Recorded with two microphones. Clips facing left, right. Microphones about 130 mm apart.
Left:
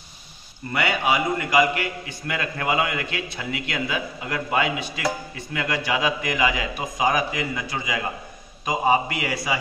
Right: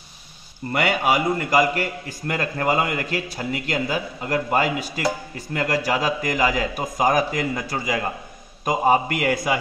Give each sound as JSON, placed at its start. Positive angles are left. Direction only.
{"t": 0.7, "sound": "a man's voice", "side_deg": -45}